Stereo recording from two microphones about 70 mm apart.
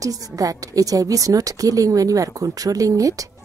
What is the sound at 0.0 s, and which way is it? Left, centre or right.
A woman's voice, right.